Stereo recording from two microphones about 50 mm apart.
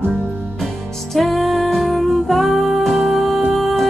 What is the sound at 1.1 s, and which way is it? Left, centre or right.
Music, centre.